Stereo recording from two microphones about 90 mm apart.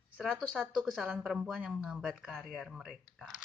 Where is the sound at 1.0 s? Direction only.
10° right (ahead or behind).